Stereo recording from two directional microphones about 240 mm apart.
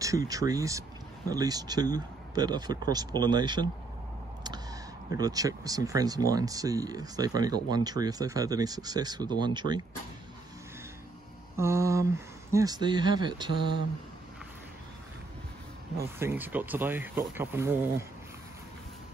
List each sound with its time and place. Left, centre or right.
0.0 s speech: centre
5.1 s speech: centre
11.5 s speech: centre
16.2 s speech: centre